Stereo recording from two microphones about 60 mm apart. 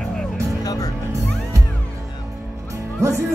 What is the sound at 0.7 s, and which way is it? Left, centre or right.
Music, left.